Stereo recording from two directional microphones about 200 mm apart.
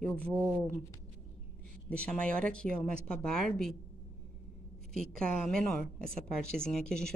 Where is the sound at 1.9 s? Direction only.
5° left (ahead or behind).